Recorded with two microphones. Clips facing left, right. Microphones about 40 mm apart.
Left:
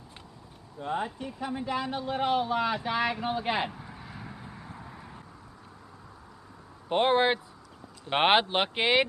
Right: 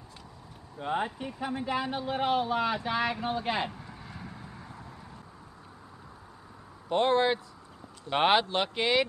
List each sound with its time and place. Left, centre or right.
0.7 s speech: right; by 4.8 s centre
4.8 s a sound: left
6.9 s speech: left